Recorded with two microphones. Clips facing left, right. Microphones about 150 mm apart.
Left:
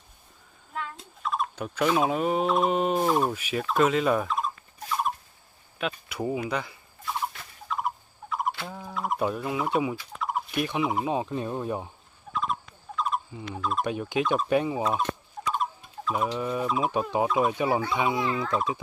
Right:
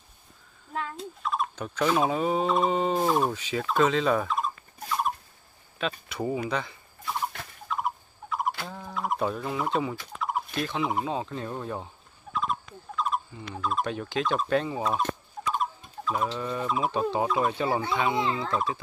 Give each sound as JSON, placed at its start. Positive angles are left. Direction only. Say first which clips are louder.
{"t": 1.2, "sound": "turkey", "louder": "left 1 dB", "side_deg": 0}
{"t": 5.8, "sound": "fowl", "louder": "even", "side_deg": 5}
{"t": 10.5, "sound": "turkey", "louder": "left 5 dB", "side_deg": 15}
{"t": 11.1, "sound": "speech", "louder": "left 3 dB", "side_deg": 15}
{"t": 12.3, "sound": "turkey", "louder": "even", "side_deg": 0}
{"t": 13.6, "sound": "speech", "louder": "even", "side_deg": 0}
{"t": 13.8, "sound": "speech", "louder": "left 2 dB", "side_deg": 10}
{"t": 14.8, "sound": "fowl", "louder": "left 1 dB", "side_deg": 0}
{"t": 16.3, "sound": "speech", "louder": "left 2 dB", "side_deg": 10}
{"t": 16.6, "sound": "speech", "louder": "right 1 dB", "side_deg": 0}
{"t": 16.9, "sound": "speech", "louder": "left 1 dB", "side_deg": 15}
{"t": 18.1, "sound": "a child's voice", "louder": "even", "side_deg": -25}
{"t": 18.5, "sound": "a child's voice", "louder": "left 1 dB", "side_deg": 0}